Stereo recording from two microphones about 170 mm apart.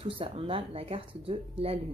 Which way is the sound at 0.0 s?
35° right (ahead or behind).